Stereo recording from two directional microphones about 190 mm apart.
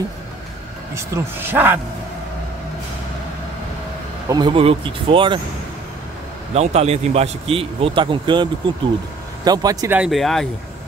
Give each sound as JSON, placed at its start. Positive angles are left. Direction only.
{"t": 0.9, "sound": "speech", "side_deg": -15}
{"t": 4.3, "sound": "speech", "side_deg": -25}
{"t": 6.5, "sound": "a man's voice", "side_deg": -35}
{"t": 9.9, "sound": "speech", "side_deg": 0}